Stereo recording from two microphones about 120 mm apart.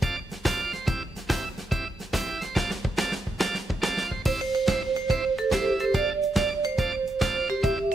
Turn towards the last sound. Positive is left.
turn(degrees=0)  # may be behind; listen again after turning